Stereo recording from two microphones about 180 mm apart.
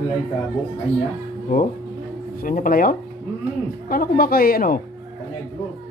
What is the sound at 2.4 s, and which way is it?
Speech, 50° left (ahead or behind).